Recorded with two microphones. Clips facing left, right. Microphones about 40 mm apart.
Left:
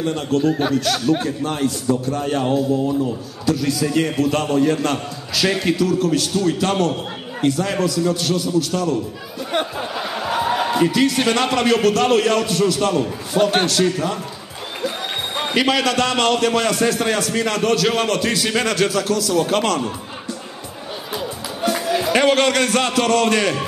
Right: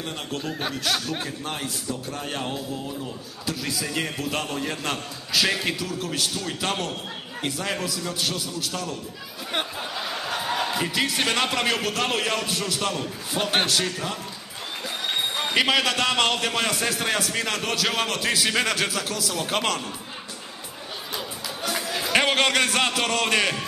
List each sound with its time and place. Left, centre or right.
0.0 s a man's voice: centre
2.8 s a man's voice: left
3.4 s a man's voice: centre
9.8 s a sound: centre
10.9 s a man's voice: centre
11.1 s a man's voice: centre
13.8 s speech: centre
15.5 s a man's voice: centre
21.1 s music: centre
22.1 s a man's voice: centre